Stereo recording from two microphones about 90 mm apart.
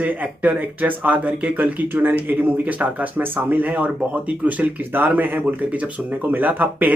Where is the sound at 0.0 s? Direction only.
20° right (ahead or behind).